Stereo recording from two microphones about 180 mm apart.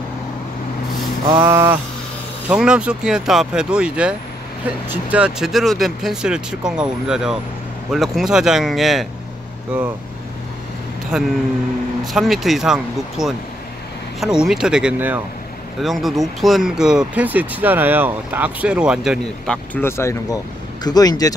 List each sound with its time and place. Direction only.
1.3 s speech: 15° right (ahead or behind)
11.1 s speech: 5° right (ahead or behind); by 21.3 s 20° left (ahead or behind)